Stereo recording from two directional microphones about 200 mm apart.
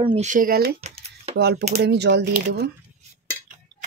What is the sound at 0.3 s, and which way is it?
Speech, 45° right (ahead or behind).